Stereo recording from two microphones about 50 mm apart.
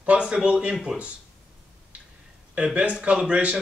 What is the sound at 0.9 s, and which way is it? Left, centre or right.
Speech, centre.